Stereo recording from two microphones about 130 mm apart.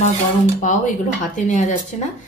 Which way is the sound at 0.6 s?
75° left (ahead or behind).